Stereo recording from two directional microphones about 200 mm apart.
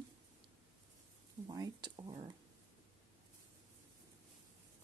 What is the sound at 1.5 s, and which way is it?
Speech, 20° right (ahead or behind).